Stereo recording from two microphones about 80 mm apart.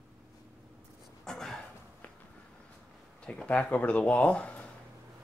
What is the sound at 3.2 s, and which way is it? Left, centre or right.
Speech, centre.